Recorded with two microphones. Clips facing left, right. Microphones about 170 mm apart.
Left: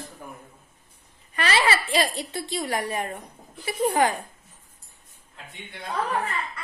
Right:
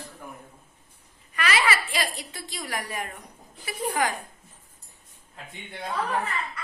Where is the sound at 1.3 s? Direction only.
30° left (ahead or behind).